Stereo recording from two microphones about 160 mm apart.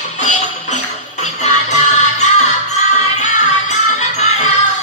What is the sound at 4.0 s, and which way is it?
Music, 45° left (ahead or behind).